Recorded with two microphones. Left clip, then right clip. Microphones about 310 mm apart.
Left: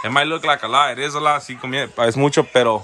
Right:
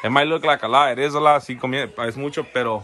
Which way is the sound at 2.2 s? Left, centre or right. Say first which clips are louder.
Left 9 dB; centre.